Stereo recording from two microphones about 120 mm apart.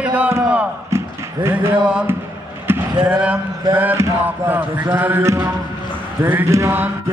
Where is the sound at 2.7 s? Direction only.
20° right (ahead or behind).